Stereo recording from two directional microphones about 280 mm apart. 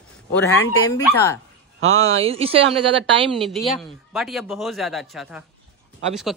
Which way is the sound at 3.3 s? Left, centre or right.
Centre.